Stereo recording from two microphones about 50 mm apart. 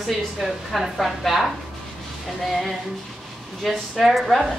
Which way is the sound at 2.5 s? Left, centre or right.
Centre.